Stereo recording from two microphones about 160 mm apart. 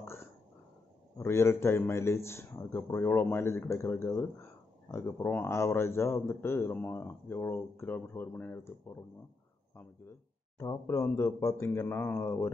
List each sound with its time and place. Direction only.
1.1 s speech: 15° left (ahead or behind)
10.6 s speech: 20° left (ahead or behind)